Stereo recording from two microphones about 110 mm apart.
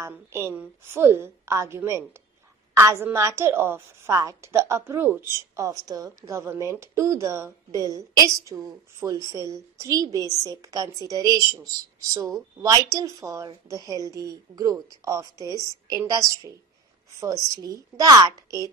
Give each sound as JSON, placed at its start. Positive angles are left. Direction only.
{"t": 0.0, "sound": "a woman's voice", "side_deg": -20}
{"t": 5.6, "sound": "a woman's voice", "side_deg": -30}